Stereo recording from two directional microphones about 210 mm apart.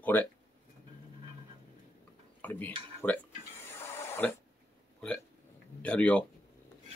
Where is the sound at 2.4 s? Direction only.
10° left (ahead or behind).